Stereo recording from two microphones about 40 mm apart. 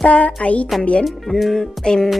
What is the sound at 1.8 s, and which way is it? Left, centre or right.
Speech, centre.